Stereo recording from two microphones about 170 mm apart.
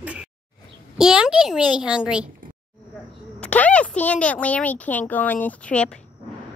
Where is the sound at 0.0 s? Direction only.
10° right (ahead or behind).